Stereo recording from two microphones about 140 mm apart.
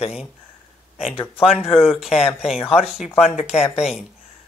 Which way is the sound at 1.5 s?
45° left (ahead or behind).